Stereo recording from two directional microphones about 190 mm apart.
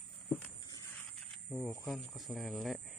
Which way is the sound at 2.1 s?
Centre (ahead or behind).